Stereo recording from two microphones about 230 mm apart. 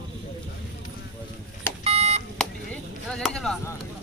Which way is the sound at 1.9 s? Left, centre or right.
Right.